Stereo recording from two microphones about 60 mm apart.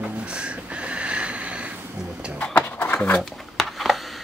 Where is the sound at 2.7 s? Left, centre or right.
Left.